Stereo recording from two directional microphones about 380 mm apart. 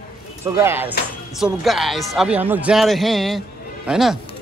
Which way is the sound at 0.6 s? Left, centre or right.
Centre.